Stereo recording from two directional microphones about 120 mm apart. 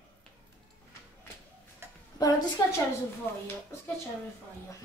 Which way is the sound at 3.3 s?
20° left (ahead or behind).